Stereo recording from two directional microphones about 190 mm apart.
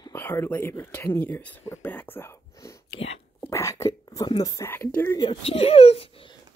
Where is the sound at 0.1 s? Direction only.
10° left (ahead or behind).